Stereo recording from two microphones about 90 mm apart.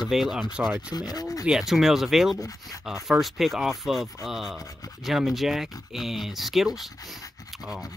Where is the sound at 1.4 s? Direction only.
5° right (ahead or behind).